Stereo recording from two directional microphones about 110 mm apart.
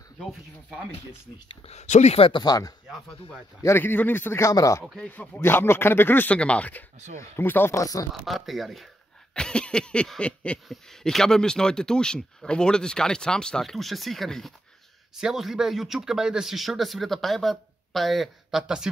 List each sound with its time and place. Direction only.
1.7 s speech: 90° left; by 2.3 s 70° left (ahead or behind)
2.3 s speech: 35° left (ahead or behind)
3.6 s speech: 20° left (ahead or behind)
4.9 s speech: 10° left (ahead or behind); by 8.1 s 30° left (ahead or behind)
8.1 s speech: centre (ahead or behind)